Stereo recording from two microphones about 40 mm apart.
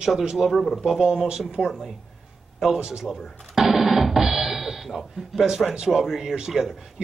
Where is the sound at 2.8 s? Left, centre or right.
Centre.